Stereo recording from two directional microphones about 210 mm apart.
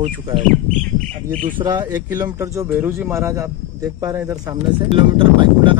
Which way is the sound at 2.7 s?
10° right (ahead or behind).